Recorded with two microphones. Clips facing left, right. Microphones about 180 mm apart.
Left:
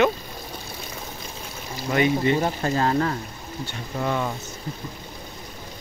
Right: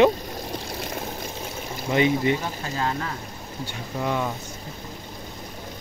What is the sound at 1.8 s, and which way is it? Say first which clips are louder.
Speech: even; 20° right (ahead or behind).